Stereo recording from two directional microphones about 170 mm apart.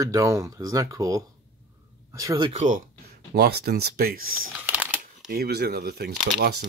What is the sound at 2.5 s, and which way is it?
Speech, 45° right (ahead or behind).